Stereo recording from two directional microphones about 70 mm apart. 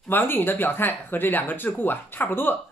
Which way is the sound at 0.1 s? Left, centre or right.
Left.